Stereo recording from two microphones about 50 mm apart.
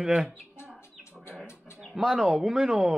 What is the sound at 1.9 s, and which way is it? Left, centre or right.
Speech, centre.